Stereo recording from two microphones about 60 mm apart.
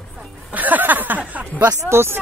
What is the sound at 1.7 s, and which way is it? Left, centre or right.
Speech, right.